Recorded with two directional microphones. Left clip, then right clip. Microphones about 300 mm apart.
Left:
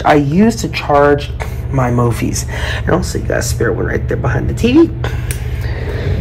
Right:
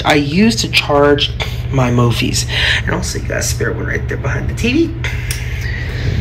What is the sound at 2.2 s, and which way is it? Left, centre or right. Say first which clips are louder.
Speech: right 3 dB; centre.